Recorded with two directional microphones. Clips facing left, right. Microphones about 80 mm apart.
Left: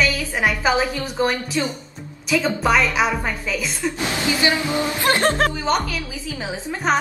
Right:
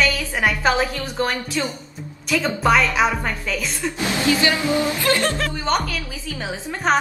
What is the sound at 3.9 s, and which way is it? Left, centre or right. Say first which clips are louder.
Speech: right 2 dB; left.